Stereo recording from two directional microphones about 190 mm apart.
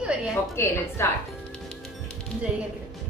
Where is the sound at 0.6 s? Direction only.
15° left (ahead or behind).